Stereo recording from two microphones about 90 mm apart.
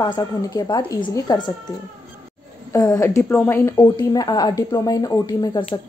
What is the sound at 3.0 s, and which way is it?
A woman's voice, 30° left (ahead or behind).